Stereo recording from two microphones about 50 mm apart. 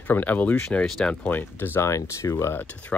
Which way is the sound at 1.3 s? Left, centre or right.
Left.